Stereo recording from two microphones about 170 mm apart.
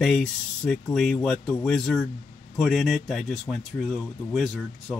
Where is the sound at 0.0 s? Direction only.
5° left (ahead or behind).